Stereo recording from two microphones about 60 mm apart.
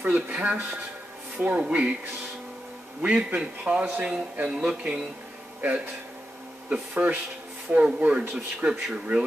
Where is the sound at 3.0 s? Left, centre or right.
Right.